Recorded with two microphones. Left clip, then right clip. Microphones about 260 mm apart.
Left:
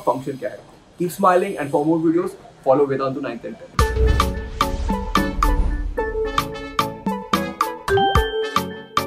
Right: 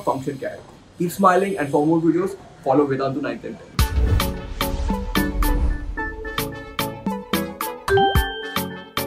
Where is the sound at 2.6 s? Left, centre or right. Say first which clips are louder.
Left 2 dB; centre.